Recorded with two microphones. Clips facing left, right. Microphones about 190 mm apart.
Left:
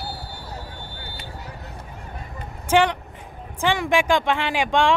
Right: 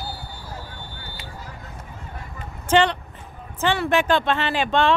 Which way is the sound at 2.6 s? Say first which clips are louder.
Even; 10° left (ahead or behind).